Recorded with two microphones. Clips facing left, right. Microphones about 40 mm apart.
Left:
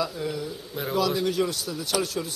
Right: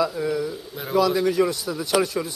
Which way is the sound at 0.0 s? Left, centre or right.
Right.